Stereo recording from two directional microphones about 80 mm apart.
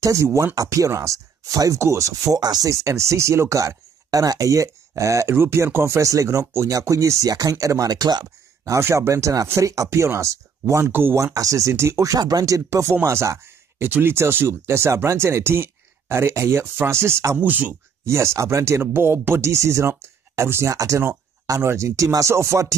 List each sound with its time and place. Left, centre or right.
0.0 s speech: right
2.7 s speech: right
5.3 s speech: right
6.7 s speech: right
8.7 s speech: right
11.3 s speech: right
17.4 s speech: centre
18.0 s speech: right